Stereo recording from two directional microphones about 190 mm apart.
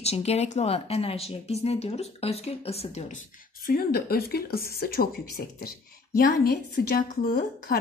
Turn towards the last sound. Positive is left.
turn(degrees=50)  # may be behind; listen again after turning